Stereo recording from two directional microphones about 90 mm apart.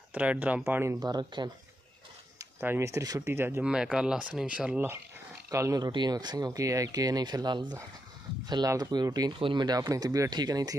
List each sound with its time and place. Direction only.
0.1 s speech: 15° right (ahead or behind)
0.9 s speech: 50° right (ahead or behind)
2.6 s speech: 30° right (ahead or behind)
3.2 s speech: 25° right (ahead or behind)
3.6 s speech: 10° right (ahead or behind)
5.5 s speech: 35° right (ahead or behind)
5.9 s speech: 50° right (ahead or behind)
8.6 s speech: 40° right (ahead or behind)
9.4 s speech: 60° right (ahead or behind)
9.8 s speech: 45° right (ahead or behind)